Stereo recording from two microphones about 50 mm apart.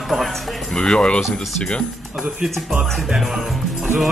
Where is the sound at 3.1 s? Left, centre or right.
Centre.